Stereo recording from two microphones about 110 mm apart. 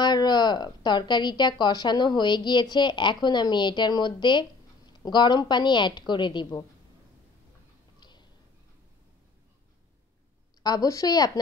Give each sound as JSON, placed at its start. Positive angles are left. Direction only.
{"t": 0.0, "sound": "a woman's voice", "side_deg": 40}
{"t": 8.0, "sound": "a sound", "side_deg": 40}
{"t": 10.6, "sound": "a woman's voice", "side_deg": 35}